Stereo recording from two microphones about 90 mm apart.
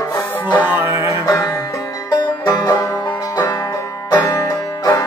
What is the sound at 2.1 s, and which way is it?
Banjo, 40° left (ahead or behind).